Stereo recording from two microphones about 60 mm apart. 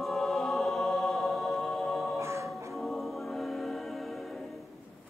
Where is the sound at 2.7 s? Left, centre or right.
Centre.